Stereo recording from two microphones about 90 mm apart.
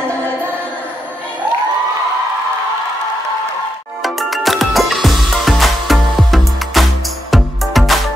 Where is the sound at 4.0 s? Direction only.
Centre (ahead or behind).